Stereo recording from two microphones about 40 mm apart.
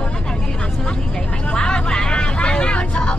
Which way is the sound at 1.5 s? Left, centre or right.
Left.